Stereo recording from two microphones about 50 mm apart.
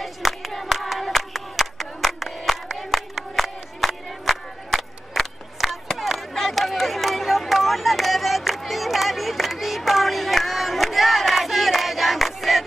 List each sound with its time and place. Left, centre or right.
0.0 s clapping: centre
2.5 s music: centre